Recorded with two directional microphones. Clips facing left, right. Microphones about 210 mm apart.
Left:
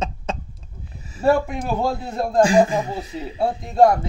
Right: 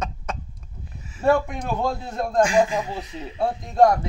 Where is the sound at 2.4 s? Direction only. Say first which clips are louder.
Left 4 dB; 35° left (ahead or behind).